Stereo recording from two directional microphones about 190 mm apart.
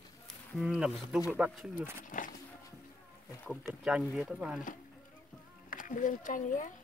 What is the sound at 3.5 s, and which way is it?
Speech, centre (ahead or behind).